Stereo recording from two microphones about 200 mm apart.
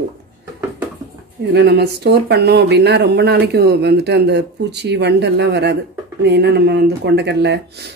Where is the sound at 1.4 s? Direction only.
55° right (ahead or behind).